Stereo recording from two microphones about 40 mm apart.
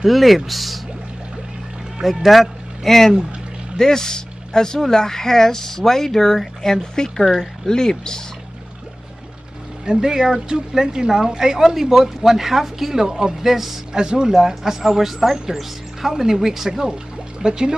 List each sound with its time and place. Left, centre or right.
0.0 s speech: centre
2.0 s speech: centre
9.8 s speech: centre
13.9 s speech: centre